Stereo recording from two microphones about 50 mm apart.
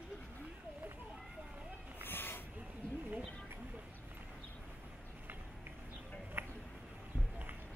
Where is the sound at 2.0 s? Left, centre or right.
Left.